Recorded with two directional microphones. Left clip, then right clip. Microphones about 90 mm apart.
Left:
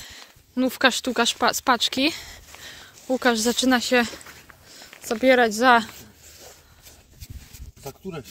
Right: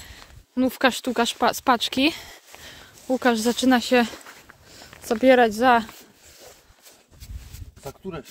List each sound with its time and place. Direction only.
0.0 s a sound: 15° right (ahead or behind)
0.6 s speech: 35° right (ahead or behind); by 2.4 s 60° right (ahead or behind)
2.6 s speech: 40° right (ahead or behind)
4.6 s a sound: 55° right (ahead or behind)
5.6 s speech: 10° right (ahead or behind)
7.8 s speech: 25° right (ahead or behind)